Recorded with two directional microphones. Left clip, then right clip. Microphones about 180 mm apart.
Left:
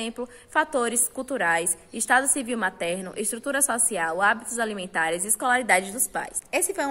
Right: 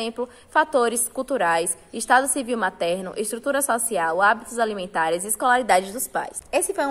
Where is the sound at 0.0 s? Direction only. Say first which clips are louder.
Right 5 dB; 15° left (ahead or behind).